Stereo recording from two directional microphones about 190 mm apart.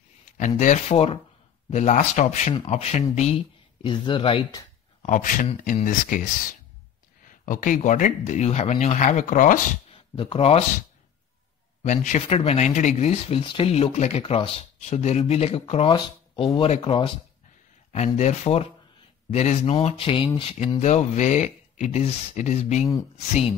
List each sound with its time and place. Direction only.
0.4 s speech: 40° left (ahead or behind)
5.0 s speech: 40° left (ahead or behind)
7.2 s speech: 45° left (ahead or behind)
9.8 s a sound: 30° left (ahead or behind)
11.8 s speech: 40° left (ahead or behind)